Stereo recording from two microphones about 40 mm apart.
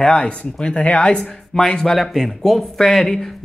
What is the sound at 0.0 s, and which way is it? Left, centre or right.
Speech, left.